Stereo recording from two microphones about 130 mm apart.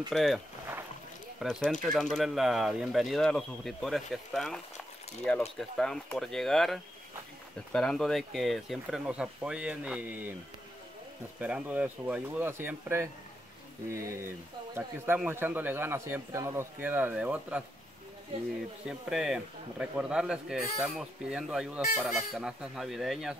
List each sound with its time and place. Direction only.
0.1 s speech: centre (ahead or behind)
1.4 s speech: 5° left (ahead or behind)
5.6 s speech: 5° left (ahead or behind); by 10.3 s 10° right (ahead or behind)
11.3 s a man's voice: 10° right (ahead or behind)
18.9 s speech: 5° right (ahead or behind)